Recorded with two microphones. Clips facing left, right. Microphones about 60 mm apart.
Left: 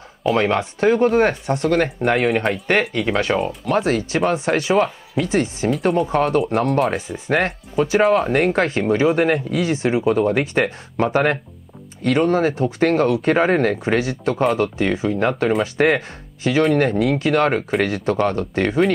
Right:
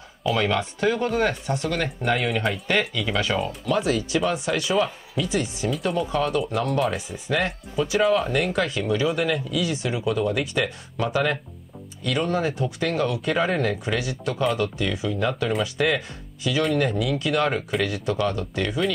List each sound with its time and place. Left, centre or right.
0.2 s speech: left
5.7 s speech: left